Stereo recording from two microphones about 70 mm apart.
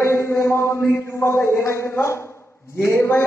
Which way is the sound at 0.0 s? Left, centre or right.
Left.